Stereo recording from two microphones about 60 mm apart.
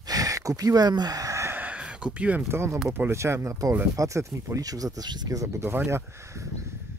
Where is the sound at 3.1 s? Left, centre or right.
Right.